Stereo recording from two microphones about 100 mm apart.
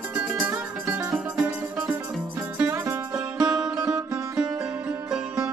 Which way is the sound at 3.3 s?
45° right (ahead or behind).